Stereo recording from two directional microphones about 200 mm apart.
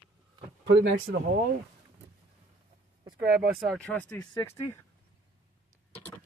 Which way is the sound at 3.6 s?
5° left (ahead or behind).